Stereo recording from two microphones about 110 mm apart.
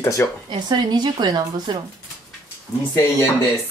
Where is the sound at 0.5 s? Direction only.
40° right (ahead or behind).